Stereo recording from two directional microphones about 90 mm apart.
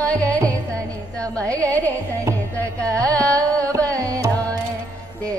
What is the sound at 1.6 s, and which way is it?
Music, 15° left (ahead or behind).